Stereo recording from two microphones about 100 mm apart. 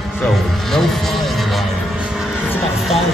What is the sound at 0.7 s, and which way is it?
Speech, 5° left (ahead or behind).